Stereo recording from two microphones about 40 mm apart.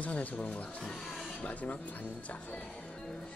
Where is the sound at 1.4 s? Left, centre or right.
Left.